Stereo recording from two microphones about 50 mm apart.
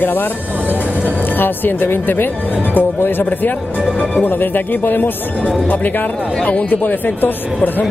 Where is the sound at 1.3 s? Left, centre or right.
Left.